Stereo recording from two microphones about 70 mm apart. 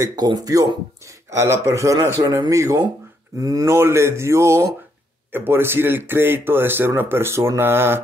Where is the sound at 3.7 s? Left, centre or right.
Right.